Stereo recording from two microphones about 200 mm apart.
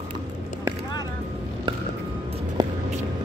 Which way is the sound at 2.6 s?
20° right (ahead or behind).